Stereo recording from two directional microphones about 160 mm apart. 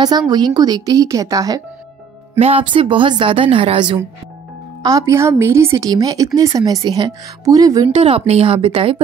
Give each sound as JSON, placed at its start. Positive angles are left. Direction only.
{"t": 0.3, "sound": "a woman's voice", "side_deg": -25}
{"t": 2.3, "sound": "a woman's voice", "side_deg": -40}
{"t": 4.8, "sound": "a woman's voice", "side_deg": -20}
{"t": 7.9, "sound": "a woman's voice", "side_deg": -40}